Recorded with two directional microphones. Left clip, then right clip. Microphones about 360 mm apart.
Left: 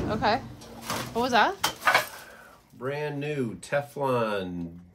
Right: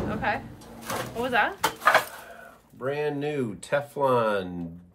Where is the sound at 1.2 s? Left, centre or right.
Centre.